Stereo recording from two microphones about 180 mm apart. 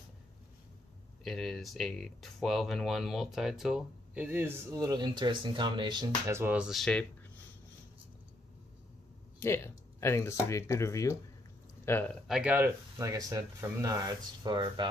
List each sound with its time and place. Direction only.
1.2 s speech: centre (ahead or behind)
9.4 s speech: 15° left (ahead or behind)
12.3 s speech: 5° right (ahead or behind); by 14.9 s 25° right (ahead or behind)